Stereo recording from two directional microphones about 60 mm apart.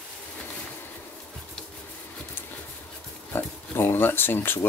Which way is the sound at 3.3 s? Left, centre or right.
Left.